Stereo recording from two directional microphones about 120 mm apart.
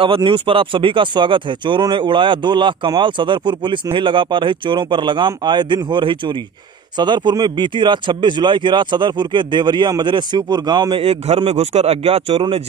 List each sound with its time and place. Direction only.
0.0 s speech: 45° right (ahead or behind)